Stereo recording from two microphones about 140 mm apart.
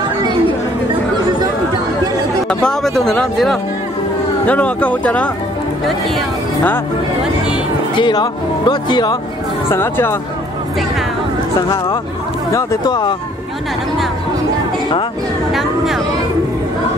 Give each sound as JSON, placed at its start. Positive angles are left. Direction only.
{"t": 2.6, "sound": "speech", "side_deg": 5}
{"t": 8.0, "sound": "speech", "side_deg": 30}
{"t": 9.7, "sound": "speech", "side_deg": 15}
{"t": 12.5, "sound": "speech", "side_deg": 30}
{"t": 15.5, "sound": "speech", "side_deg": 0}